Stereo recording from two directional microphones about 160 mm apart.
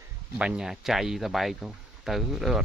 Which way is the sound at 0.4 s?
5° right (ahead or behind).